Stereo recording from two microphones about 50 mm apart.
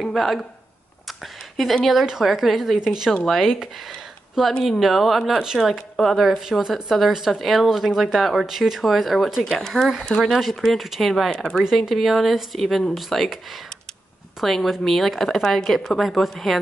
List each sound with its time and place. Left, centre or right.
0.0 s speech: centre
1.0 s a sound: centre
1.9 s a woman's voice: centre